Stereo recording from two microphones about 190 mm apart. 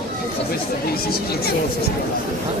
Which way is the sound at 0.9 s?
55° left (ahead or behind).